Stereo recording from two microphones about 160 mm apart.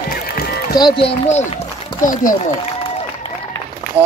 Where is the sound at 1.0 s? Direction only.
40° left (ahead or behind).